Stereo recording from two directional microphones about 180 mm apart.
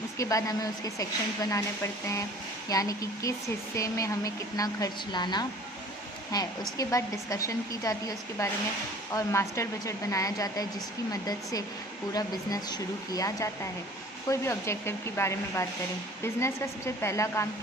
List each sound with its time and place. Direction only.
0.2 s speech: 20° left (ahead or behind)
2.7 s a woman's voice: 20° left (ahead or behind)
12.1 s a woman's voice: 20° left (ahead or behind)